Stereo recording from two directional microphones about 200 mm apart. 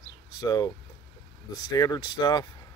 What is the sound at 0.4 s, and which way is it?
Speech, 20° left (ahead or behind).